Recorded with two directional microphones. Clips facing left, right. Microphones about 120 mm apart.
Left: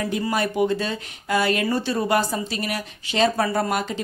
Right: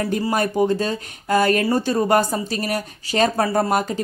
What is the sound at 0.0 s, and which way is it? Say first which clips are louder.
Speech: right 3 dB; 40° right (ahead or behind).